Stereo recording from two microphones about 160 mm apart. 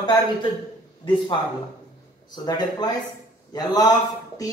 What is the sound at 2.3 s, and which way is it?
A man's voice, 25° left (ahead or behind).